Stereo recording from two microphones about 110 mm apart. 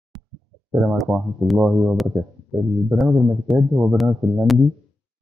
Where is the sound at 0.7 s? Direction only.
10° right (ahead or behind).